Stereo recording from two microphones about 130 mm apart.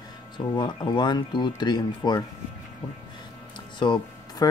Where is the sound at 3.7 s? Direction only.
35° left (ahead or behind).